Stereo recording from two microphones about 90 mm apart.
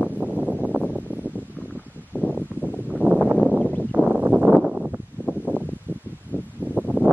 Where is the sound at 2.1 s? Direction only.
20° left (ahead or behind).